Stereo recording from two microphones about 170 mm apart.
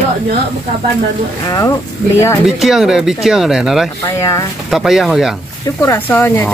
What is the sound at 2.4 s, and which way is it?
Speech, centre (ahead or behind).